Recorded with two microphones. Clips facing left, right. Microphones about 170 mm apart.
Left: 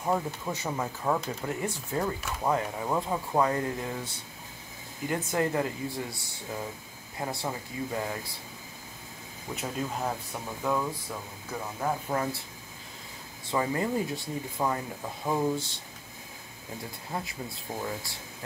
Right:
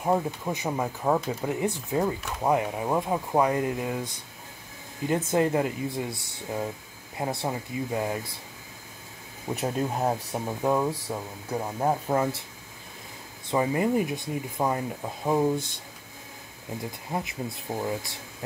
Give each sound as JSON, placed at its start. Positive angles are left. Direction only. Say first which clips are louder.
{"t": 0.0, "sound": "speech", "louder": "right 4 dB", "side_deg": -15}
{"t": 9.5, "sound": "speech", "louder": "right 6 dB", "side_deg": -50}
{"t": 9.9, "sound": "speech", "louder": "right 6 dB", "side_deg": -35}
{"t": 13.5, "sound": "speech", "louder": "right 4 dB", "side_deg": -20}
{"t": 17.1, "sound": "speech", "louder": "right 4 dB", "side_deg": -20}